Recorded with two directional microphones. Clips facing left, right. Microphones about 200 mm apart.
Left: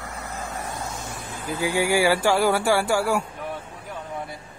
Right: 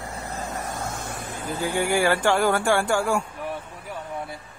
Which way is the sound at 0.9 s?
55° right (ahead or behind).